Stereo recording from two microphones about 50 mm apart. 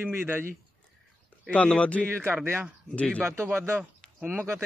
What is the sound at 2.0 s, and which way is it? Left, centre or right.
Speech, right.